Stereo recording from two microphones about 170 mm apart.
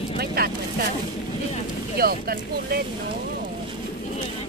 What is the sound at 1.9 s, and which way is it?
Speech, 60° right (ahead or behind).